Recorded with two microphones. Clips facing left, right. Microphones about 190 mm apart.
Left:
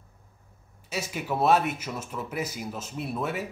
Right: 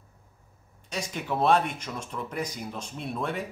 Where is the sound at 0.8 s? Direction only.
5° left (ahead or behind).